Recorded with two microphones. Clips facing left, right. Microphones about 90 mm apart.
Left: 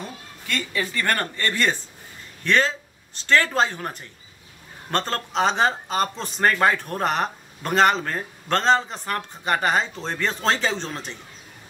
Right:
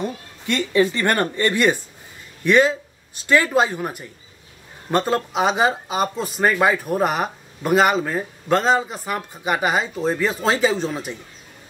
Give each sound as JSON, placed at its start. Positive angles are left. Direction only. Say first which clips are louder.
{"t": 0.0, "sound": "speech", "louder": "right 9 dB", "side_deg": -20}